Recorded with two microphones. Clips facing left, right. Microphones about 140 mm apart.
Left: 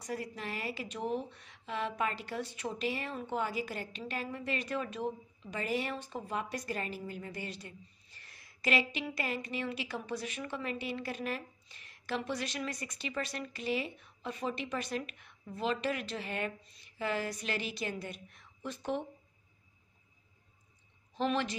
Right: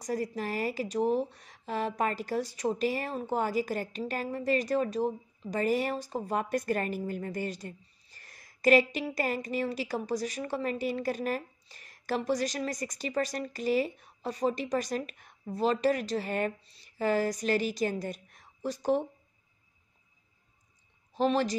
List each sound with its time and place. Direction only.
0.0 s speech: 40° right (ahead or behind)
21.1 s a woman's voice: 35° right (ahead or behind)